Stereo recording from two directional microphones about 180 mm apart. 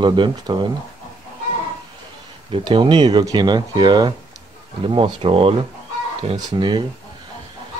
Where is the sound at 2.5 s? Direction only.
30° right (ahead or behind).